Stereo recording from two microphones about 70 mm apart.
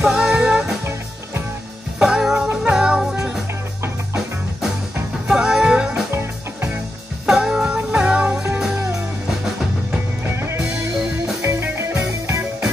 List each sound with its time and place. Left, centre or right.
0.0 s music: centre
2.0 s music: centre
5.3 s music: centre
6.1 s music: right
7.2 s music: centre
7.7 s music: centre
11.6 s music: right